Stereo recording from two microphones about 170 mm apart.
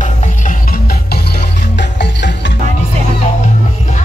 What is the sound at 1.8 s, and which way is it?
Music, 90° left.